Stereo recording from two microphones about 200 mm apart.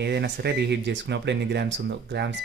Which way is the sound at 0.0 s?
55° right (ahead or behind).